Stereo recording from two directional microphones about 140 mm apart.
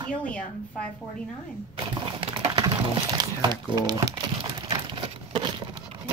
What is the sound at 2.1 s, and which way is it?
Speech, 35° right (ahead or behind).